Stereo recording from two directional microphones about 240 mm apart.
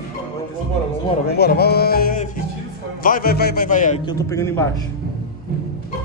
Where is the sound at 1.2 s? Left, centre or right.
Left.